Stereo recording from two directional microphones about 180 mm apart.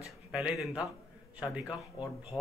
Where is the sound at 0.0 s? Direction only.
5° right (ahead or behind).